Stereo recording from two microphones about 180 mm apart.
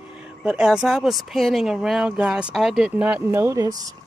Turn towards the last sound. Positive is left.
turn(degrees=-20)  # may be behind; listen again after turning